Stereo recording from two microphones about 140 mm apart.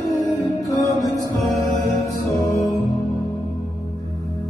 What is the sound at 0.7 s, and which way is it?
Music, 25° left (ahead or behind).